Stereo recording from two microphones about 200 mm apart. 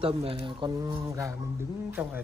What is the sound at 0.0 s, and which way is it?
A man's voice, 30° right (ahead or behind).